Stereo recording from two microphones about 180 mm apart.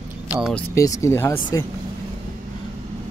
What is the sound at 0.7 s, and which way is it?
Speech, 15° left (ahead or behind).